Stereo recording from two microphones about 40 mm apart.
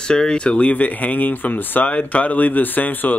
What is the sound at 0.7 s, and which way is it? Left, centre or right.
Speech, left.